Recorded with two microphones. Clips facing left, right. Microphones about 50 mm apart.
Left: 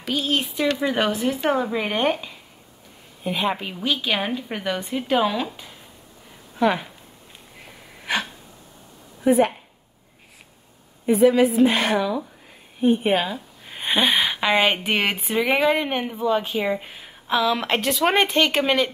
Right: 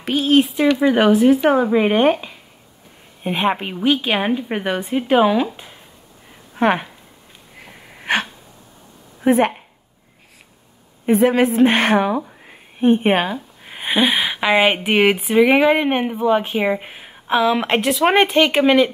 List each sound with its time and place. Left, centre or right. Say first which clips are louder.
0.0 s speech: right 8 dB; right
3.3 s a woman's voice: right 5 dB; right
6.5 s speech: right 3 dB; right
8.0 s a sound: right 5 dB; right
9.2 s a woman's voice: right 2 dB; right
11.1 s speech: right 1 dB; right
13.7 s a sound: right 3 dB; centre
14.3 s speech: right 4 dB; centre
18.5 s speech: right 6 dB; centre